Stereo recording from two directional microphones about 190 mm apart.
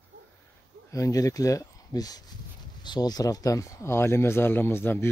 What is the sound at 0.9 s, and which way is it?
Speech, 15° left (ahead or behind).